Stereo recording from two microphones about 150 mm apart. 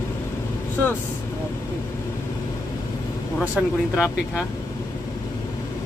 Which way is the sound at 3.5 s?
5° right (ahead or behind).